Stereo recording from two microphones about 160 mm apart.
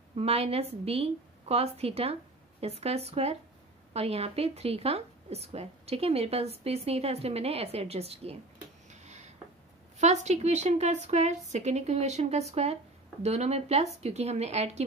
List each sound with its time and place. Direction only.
0.1 s a woman's voice: 40° right (ahead or behind)
8.9 s a sound: 45° right (ahead or behind)
9.9 s a woman's voice: 45° right (ahead or behind)